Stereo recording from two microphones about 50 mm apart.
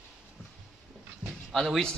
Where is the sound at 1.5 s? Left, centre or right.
Centre.